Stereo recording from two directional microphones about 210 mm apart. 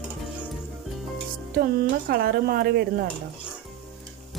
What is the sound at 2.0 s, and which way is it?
Speech, 45° right (ahead or behind).